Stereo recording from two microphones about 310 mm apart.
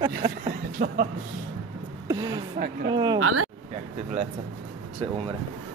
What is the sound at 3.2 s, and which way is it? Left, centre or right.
Speech, right.